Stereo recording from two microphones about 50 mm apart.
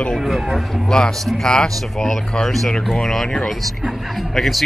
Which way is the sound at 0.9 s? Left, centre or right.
Centre.